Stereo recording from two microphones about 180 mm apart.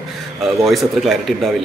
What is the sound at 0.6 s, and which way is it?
Speech, centre (ahead or behind).